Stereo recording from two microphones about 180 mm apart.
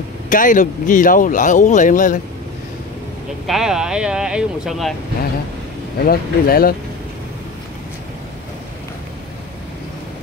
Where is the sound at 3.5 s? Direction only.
5° right (ahead or behind).